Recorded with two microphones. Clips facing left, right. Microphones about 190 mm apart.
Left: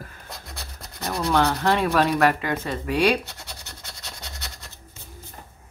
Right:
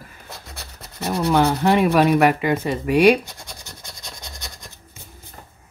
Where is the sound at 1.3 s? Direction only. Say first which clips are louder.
Right 4 dB; 15° right (ahead or behind).